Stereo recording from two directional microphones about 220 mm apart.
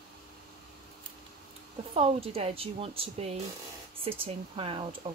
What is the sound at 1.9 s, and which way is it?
Speech, 25° right (ahead or behind).